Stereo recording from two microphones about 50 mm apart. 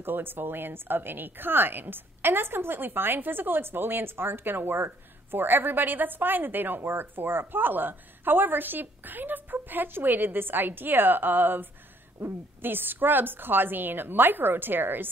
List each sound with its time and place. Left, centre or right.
0.0 s a woman's voice: right